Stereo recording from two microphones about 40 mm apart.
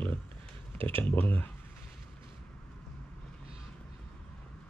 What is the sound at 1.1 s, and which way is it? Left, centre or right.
Speech, left.